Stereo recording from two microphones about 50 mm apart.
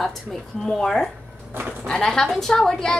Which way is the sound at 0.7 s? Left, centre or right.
Centre.